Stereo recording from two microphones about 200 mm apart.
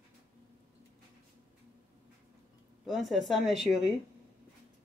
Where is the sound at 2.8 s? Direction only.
Centre (ahead or behind).